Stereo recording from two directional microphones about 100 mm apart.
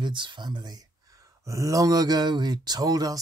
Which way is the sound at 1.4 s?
30° right (ahead or behind).